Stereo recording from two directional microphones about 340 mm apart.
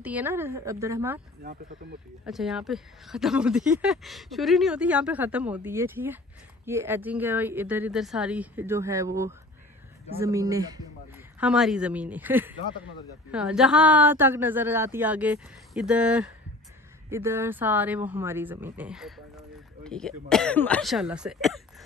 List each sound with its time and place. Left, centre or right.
0.0 s a woman's voice: centre
1.4 s speech: right
2.2 s a woman's voice: centre